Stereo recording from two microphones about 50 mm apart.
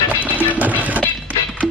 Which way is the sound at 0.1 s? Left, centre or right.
Right.